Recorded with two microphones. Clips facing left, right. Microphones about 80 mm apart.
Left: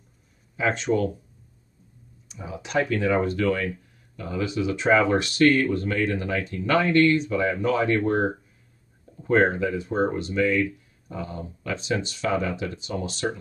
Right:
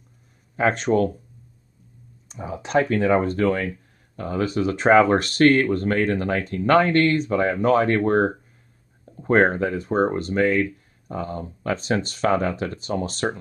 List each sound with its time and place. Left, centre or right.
0.6 s speech: right
2.2 s speech: right